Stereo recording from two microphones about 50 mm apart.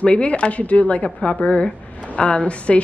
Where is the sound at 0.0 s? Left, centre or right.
Left.